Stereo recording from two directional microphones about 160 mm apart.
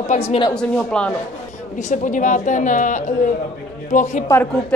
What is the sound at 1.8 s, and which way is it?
A woman's voice, 50° left (ahead or behind).